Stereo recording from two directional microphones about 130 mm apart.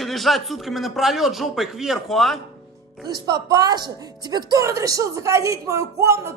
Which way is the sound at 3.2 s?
30° right (ahead or behind).